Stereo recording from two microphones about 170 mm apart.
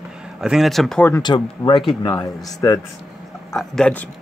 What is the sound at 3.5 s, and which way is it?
Speech, 5° left (ahead or behind).